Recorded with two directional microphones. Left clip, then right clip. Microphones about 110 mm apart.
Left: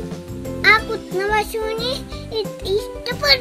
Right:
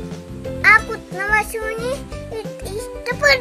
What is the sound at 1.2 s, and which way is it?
Music, 25° right (ahead or behind).